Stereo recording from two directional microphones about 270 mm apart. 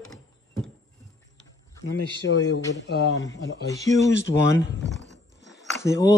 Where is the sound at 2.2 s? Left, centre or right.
Left.